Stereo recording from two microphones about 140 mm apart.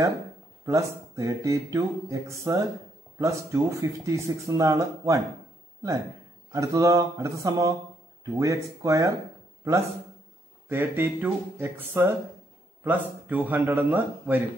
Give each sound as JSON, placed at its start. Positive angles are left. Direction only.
{"t": 0.7, "sound": "speech", "side_deg": -25}
{"t": 6.5, "sound": "speech", "side_deg": -25}
{"t": 10.7, "sound": "a man's voice", "side_deg": -15}